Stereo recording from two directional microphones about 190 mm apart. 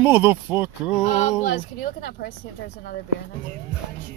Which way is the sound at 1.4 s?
50° left (ahead or behind).